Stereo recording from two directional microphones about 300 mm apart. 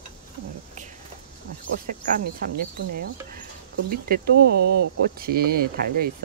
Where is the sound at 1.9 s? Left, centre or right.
Right.